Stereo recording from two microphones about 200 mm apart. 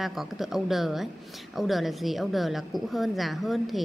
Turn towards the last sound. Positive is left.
turn(degrees=0)  # may be behind; listen again after turning